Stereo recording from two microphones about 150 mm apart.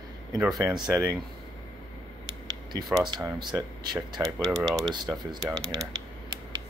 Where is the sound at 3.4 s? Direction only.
30° right (ahead or behind).